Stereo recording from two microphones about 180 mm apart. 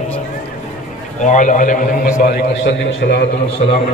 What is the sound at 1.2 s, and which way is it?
A man's voice, 45° left (ahead or behind).